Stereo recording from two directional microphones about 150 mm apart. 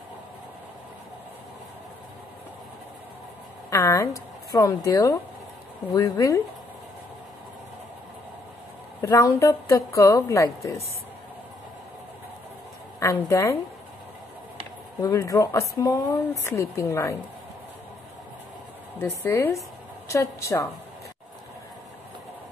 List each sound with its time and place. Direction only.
3.7 s speech: 20° left (ahead or behind)
9.0 s speech: 20° left (ahead or behind)
13.0 s speech: 20° left (ahead or behind)
15.0 s speech: 25° left (ahead or behind)
18.9 s a woman's voice: 15° left (ahead or behind)